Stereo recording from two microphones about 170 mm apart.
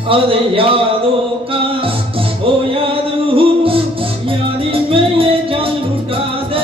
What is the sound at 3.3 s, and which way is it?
Music, 30° right (ahead or behind).